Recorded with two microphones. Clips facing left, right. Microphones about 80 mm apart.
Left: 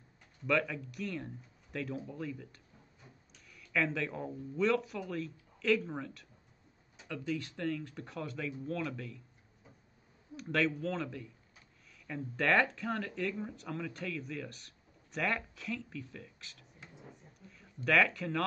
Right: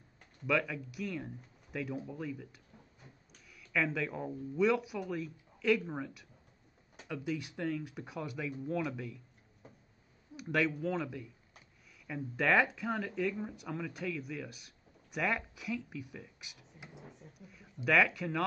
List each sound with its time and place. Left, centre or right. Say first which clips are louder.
0.5 s speech: left 1 dB; centre
10.3 s speech: even; centre